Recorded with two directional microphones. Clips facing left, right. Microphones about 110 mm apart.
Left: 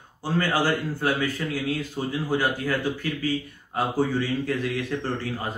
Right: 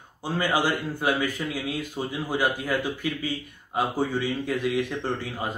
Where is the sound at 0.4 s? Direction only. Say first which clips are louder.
Left 1 dB; 15° right (ahead or behind).